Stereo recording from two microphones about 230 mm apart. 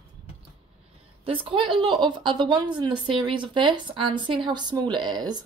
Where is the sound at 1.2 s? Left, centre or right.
Right.